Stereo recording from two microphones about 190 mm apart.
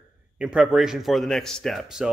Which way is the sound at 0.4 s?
5° right (ahead or behind).